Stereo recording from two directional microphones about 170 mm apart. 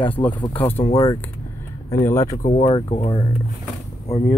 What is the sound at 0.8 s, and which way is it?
Speech, 35° left (ahead or behind).